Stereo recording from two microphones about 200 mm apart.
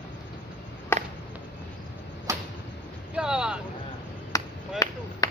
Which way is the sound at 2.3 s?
15° right (ahead or behind).